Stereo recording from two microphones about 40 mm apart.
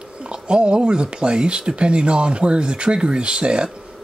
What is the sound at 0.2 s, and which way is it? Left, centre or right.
Speech, right.